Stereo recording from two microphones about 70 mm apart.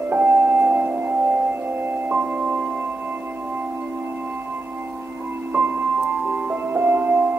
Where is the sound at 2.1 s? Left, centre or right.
Right.